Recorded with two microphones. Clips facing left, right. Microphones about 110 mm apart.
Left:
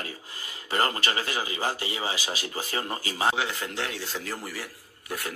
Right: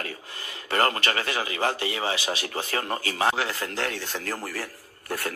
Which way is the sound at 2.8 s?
45° right (ahead or behind).